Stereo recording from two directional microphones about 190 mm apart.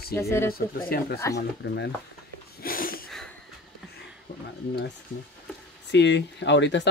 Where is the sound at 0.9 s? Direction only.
50° left (ahead or behind).